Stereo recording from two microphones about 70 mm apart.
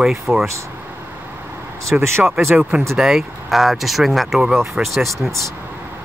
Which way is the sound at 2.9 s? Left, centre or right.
Centre.